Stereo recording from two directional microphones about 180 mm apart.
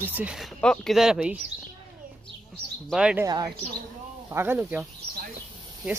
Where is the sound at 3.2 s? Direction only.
20° right (ahead or behind).